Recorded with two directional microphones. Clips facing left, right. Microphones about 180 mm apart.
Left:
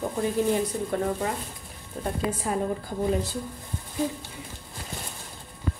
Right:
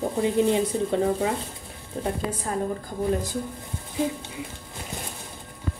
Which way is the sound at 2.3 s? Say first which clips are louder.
Left 2 dB; 20° left (ahead or behind).